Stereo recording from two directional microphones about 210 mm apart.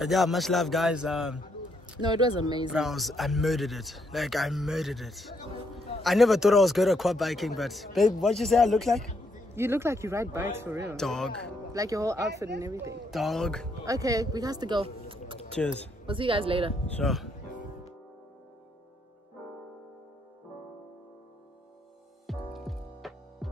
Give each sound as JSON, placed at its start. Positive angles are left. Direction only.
{"t": 0.0, "sound": "speech", "side_deg": 0}
{"t": 2.0, "sound": "speech", "side_deg": -20}
{"t": 2.7, "sound": "speech", "side_deg": 0}
{"t": 9.6, "sound": "speech", "side_deg": -10}
{"t": 11.0, "sound": "speech", "side_deg": 5}
{"t": 11.7, "sound": "speech", "side_deg": -15}
{"t": 13.1, "sound": "speech", "side_deg": 0}
{"t": 13.8, "sound": "speech", "side_deg": -15}
{"t": 15.6, "sound": "speech", "side_deg": 5}
{"t": 16.1, "sound": "speech", "side_deg": -25}
{"t": 16.9, "sound": "speech", "side_deg": 0}
{"t": 17.5, "sound": "music", "side_deg": 40}
{"t": 22.2, "sound": "music", "side_deg": 0}